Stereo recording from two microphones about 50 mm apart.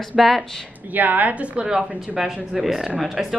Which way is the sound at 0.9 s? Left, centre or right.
Right.